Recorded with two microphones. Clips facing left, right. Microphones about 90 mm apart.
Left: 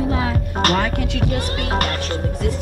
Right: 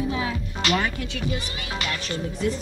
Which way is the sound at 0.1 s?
50° left (ahead or behind).